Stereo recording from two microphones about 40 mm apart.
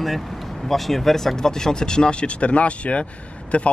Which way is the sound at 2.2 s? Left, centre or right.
Left.